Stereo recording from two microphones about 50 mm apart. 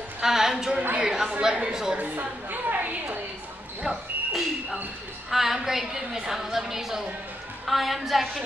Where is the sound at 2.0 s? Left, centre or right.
Right.